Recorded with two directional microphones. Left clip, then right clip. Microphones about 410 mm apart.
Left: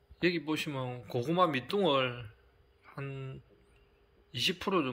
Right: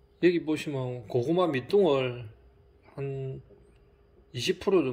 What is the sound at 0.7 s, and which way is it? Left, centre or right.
Speech, left.